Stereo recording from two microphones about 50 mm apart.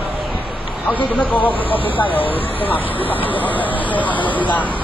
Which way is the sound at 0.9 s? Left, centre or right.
Left.